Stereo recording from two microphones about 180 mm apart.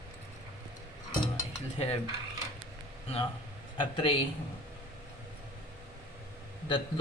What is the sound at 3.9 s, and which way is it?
Speech, 25° left (ahead or behind).